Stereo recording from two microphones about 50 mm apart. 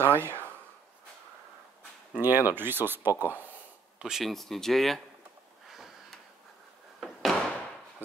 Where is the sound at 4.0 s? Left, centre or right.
Centre.